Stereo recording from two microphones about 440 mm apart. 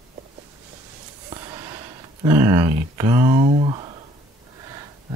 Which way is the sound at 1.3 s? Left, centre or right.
Centre.